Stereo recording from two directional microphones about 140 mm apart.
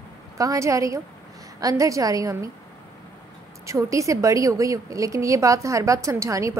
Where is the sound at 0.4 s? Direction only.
25° right (ahead or behind).